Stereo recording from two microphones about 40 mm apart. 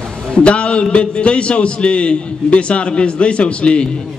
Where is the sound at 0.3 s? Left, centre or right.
Left.